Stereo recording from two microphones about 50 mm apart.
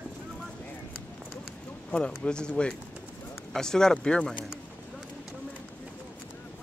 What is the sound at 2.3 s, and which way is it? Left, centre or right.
Speech, centre.